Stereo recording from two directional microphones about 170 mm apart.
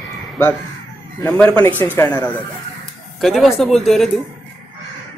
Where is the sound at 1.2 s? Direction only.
5° left (ahead or behind).